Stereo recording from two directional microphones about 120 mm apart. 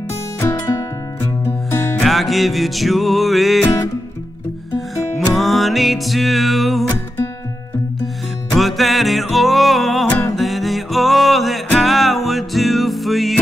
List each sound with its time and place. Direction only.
0.4 s music: 25° left (ahead or behind)
2.0 s music: centre (ahead or behind)
3.6 s music: 30° left (ahead or behind)
4.7 s music: centre (ahead or behind)
8.5 s music: centre (ahead or behind)
10.0 s music: 10° left (ahead or behind)
10.3 s music: centre (ahead or behind)